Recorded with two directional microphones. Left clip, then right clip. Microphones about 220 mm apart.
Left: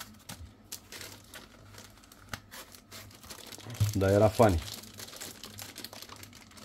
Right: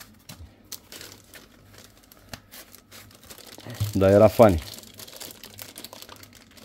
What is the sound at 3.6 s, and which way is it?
Speech, 50° right (ahead or behind).